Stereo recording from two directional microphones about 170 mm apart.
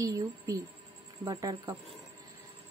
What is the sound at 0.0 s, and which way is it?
Speech, 20° right (ahead or behind).